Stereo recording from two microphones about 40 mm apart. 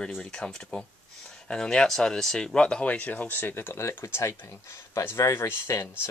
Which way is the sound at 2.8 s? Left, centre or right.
Left.